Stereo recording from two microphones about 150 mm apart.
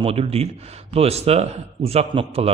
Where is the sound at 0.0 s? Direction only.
40° right (ahead or behind).